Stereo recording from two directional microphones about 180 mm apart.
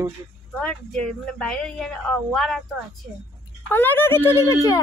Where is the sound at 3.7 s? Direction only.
10° left (ahead or behind).